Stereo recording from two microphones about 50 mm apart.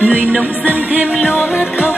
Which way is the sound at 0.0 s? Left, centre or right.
Right.